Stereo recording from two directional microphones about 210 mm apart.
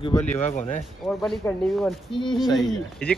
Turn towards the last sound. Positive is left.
turn(degrees=0)  # may be behind; listen again after turning